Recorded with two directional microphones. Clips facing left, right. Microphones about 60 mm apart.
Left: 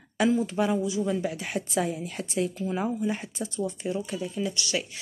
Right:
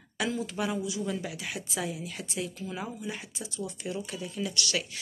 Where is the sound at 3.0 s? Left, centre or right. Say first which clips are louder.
Left 8 dB; left.